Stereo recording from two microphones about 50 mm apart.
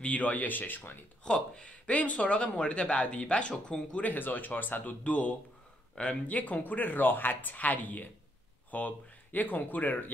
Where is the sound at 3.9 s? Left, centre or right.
Left.